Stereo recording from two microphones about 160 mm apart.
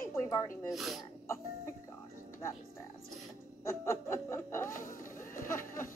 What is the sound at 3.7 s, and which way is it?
Speech, 15° left (ahead or behind).